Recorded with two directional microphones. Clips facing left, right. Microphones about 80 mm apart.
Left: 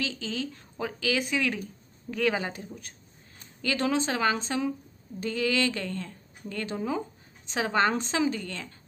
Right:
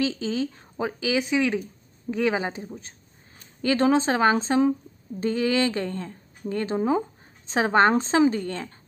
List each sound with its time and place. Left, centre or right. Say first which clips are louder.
0.0 s a woman's voice: right 7 dB; right